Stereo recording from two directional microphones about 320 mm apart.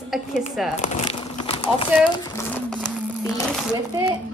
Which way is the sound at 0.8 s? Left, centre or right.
Centre.